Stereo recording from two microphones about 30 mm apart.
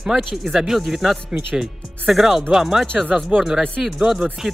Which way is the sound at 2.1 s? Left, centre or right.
Centre.